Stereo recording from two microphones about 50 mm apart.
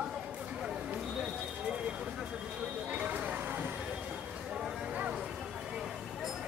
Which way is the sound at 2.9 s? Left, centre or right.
Right.